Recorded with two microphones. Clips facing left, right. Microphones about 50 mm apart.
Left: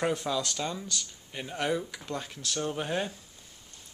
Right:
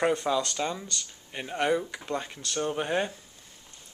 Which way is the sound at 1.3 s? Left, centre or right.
Centre.